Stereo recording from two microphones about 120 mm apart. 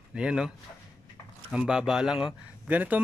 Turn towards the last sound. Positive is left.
turn(degrees=-15)  # may be behind; listen again after turning